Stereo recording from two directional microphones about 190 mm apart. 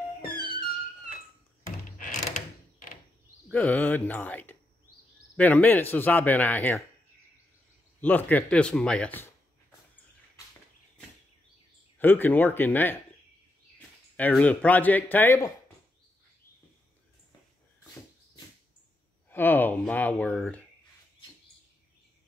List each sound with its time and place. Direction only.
1.9 s mechanisms: 40° left (ahead or behind)
3.5 s speech: 5° left (ahead or behind)
8.0 s speech: 10° left (ahead or behind)
12.0 s speech: 10° left (ahead or behind)
19.3 s speech: 10° left (ahead or behind)